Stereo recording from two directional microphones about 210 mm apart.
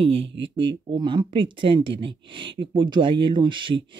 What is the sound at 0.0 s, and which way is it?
Speech, 25° right (ahead or behind).